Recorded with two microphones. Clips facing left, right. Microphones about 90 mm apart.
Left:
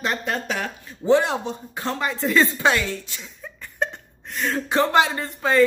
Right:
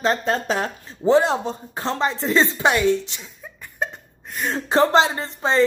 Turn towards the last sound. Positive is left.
turn(degrees=-25)  # may be behind; listen again after turning